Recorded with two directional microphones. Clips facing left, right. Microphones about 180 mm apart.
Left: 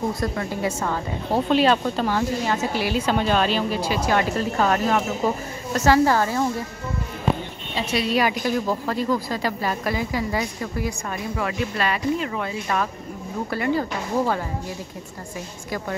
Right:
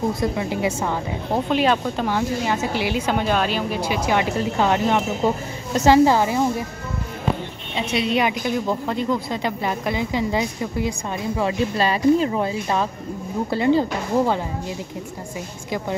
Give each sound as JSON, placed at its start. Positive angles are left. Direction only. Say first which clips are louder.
{"t": 0.2, "sound": "a woman's voice", "louder": "right 3 dB", "side_deg": -15}
{"t": 7.9, "sound": "a woman's voice", "louder": "right 1 dB", "side_deg": -20}